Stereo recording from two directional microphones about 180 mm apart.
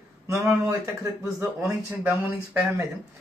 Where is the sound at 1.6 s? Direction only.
10° right (ahead or behind).